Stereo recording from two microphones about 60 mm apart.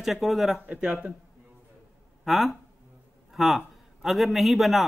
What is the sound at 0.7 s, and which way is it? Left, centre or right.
Speech, centre.